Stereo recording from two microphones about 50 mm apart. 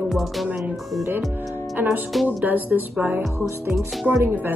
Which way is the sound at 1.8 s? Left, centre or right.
Right.